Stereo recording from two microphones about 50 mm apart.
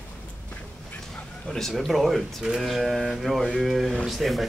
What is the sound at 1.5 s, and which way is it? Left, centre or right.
Speech, centre.